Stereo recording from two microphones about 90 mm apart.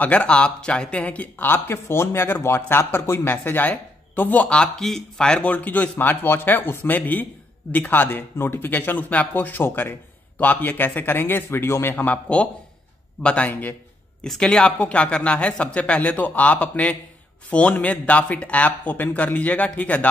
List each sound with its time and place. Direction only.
0.0 s speech: 15° left (ahead or behind)
14.2 s speech: 10° left (ahead or behind)